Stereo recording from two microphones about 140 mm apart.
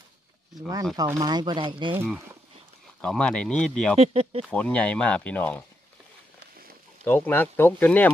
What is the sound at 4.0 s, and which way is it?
Speech, 45° right (ahead or behind).